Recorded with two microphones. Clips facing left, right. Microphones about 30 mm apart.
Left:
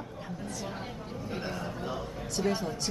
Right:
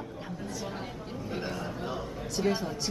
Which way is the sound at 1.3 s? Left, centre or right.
Centre.